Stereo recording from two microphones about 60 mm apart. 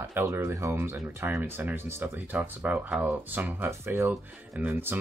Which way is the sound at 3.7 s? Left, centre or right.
Right.